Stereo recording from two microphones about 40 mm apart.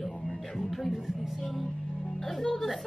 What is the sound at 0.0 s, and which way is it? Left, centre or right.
Music, centre.